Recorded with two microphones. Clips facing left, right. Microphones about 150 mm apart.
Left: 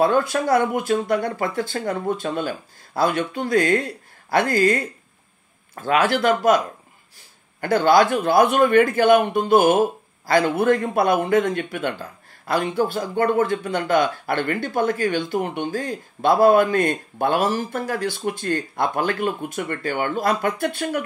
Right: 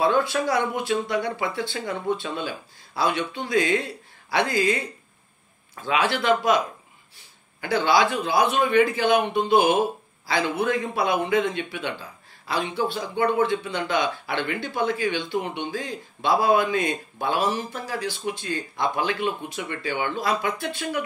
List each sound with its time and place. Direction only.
0.0 s speech: 45° left (ahead or behind)
7.6 s speech: 50° left (ahead or behind)